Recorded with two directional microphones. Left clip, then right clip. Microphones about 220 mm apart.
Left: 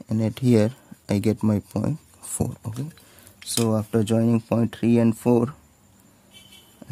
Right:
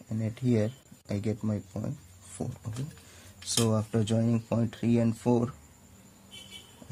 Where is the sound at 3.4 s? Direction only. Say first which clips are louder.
Left 5 dB; 20° left (ahead or behind).